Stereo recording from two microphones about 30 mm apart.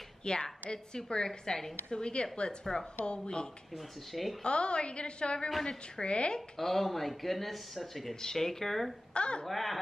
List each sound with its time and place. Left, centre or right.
0.2 s a woman's voice: left
2.6 s speech: centre
3.1 s a woman's voice: left
3.7 s speech: centre
4.4 s a woman's voice: left
5.6 s a woman's voice: centre
6.0 s a woman's voice: left
6.6 s speech: centre
8.2 s speech: centre
9.1 s a woman's voice: left
9.5 s speech: centre